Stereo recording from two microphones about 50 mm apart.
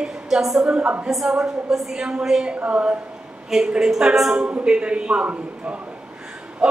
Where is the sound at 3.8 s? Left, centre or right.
Centre.